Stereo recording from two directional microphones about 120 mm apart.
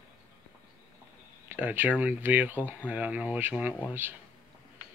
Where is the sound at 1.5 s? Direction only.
15° right (ahead or behind).